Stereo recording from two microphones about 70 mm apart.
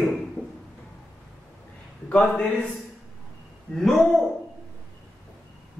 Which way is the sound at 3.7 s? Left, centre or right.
Centre.